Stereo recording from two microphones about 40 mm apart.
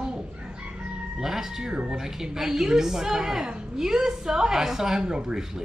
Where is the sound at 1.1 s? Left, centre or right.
Centre.